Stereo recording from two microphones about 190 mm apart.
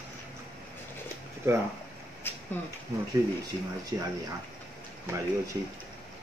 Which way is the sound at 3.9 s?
20° right (ahead or behind).